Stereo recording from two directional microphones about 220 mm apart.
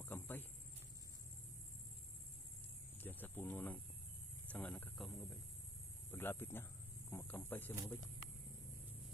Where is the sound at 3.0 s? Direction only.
10° left (ahead or behind).